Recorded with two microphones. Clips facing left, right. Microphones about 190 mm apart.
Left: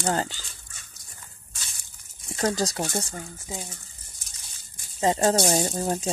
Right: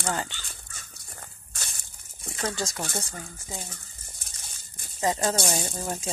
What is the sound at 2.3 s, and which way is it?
Speech, 35° left (ahead or behind).